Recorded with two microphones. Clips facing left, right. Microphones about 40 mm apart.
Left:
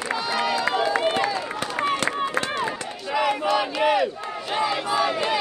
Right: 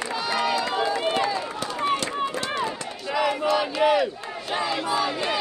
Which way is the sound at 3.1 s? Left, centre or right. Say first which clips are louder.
Left 1 dB; centre.